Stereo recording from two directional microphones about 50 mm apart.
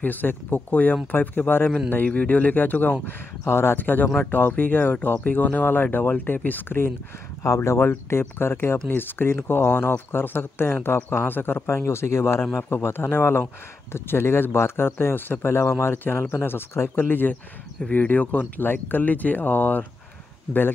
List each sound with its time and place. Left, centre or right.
0.0 s speech: left
3.4 s speech: left
7.4 s speech: left
7.8 s speech: left
12.5 s speech: left